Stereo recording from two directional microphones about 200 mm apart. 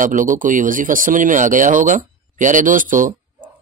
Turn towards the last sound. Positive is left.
turn(degrees=-40)  # may be behind; listen again after turning